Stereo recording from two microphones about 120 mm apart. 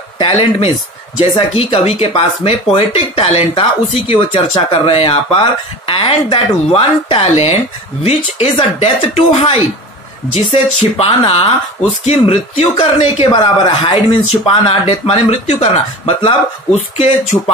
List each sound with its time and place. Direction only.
0.2 s speech: 60° left (ahead or behind)
17.3 s speech: 25° left (ahead or behind)